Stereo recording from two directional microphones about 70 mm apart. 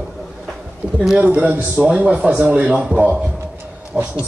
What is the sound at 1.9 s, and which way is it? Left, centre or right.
A man's voice, centre.